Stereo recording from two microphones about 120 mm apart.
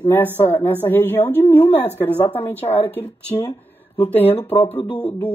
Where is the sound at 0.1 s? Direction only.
20° left (ahead or behind).